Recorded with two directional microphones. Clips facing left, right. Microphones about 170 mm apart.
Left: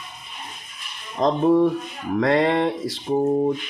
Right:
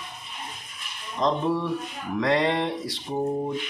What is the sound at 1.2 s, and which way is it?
Speech, 50° left (ahead or behind).